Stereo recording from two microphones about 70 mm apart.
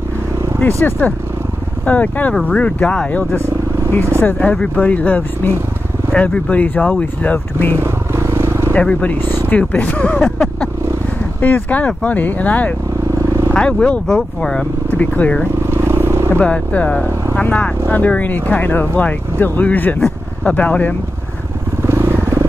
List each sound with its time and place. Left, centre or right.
0.7 s speech: left
1.9 s speech: left
3.3 s vehicle: right
4.4 s speech: centre
7.8 s vehicle: right
8.7 s speech: left
10.2 s vehicle: centre
11.4 s speech: left
15.6 s vehicle: right
16.3 s speech: centre
17.4 s vehicle: centre
17.9 s speech: left
21.8 s vehicle: right